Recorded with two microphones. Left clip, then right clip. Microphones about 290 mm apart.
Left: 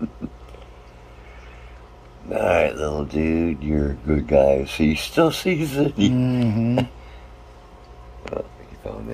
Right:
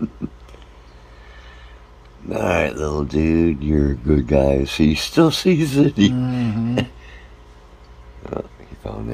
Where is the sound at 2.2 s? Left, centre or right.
Right.